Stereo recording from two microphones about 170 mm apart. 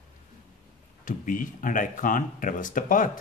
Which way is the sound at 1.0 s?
50° left (ahead or behind).